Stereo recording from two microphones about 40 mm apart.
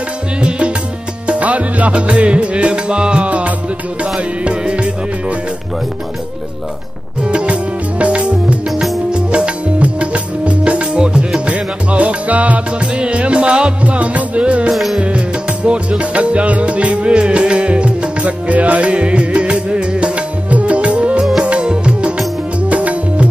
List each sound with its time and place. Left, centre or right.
0.4 s music: right
3.3 s music: right
4.0 s music: right
7.2 s music: right
9.1 s music: right
13.8 s music: right
14.7 s music: centre
15.0 s music: right
22.7 s music: right